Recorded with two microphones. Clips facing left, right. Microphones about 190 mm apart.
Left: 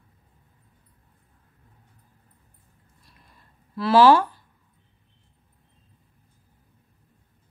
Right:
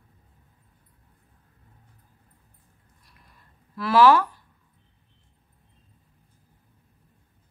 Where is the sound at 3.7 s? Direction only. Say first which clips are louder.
Left 2 dB; 30° left (ahead or behind).